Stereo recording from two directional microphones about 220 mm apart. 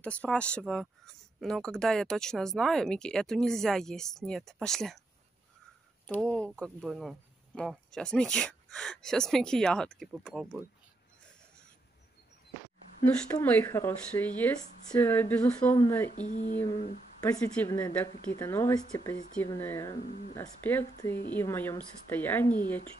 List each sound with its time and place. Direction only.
0.0 s speech: 5° left (ahead or behind)
6.0 s speech: 5° left (ahead or behind)
13.2 s speech: 10° left (ahead or behind)
16.1 s speech: 35° left (ahead or behind)
17.4 s speech: 5° left (ahead or behind)
20.1 s speech: 35° left (ahead or behind)
20.3 s speech: 10° left (ahead or behind)
21.1 s speech: 40° left (ahead or behind)
21.4 s speech: 10° left (ahead or behind)